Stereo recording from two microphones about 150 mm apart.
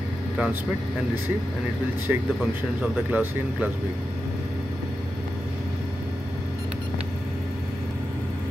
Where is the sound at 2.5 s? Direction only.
10° right (ahead or behind).